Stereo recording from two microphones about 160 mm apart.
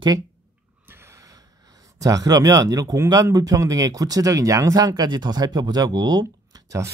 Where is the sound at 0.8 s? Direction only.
15° right (ahead or behind).